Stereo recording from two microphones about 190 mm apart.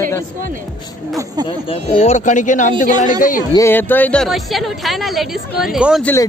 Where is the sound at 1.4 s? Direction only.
30° left (ahead or behind).